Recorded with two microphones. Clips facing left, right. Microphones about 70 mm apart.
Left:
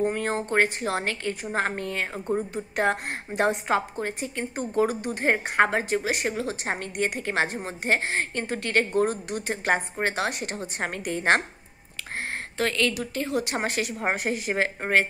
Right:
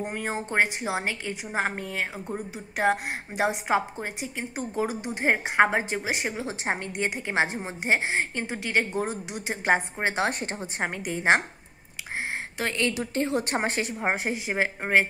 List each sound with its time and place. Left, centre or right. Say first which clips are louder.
0.0 s a woman's voice: left 5 dB; centre
3.7 s a woman's voice: even; centre
12.5 s a woman's voice: left 3 dB; right